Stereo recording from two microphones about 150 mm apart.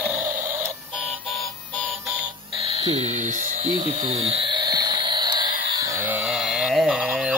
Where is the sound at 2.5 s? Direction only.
40° right (ahead or behind).